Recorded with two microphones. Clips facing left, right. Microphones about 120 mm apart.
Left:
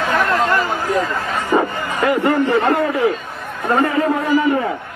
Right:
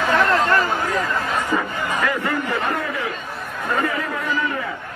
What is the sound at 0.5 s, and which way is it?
Speech, 15° left (ahead or behind).